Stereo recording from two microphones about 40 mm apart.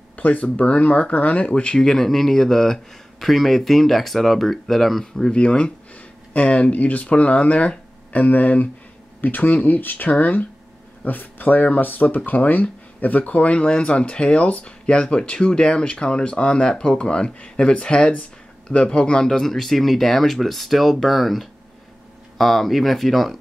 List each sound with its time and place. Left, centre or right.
0.1 s speech: left
1.9 s speech: centre
5.3 s speech: left
19.2 s speech: centre